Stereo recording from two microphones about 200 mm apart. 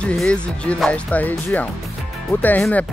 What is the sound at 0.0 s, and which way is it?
Speech, 5° left (ahead or behind).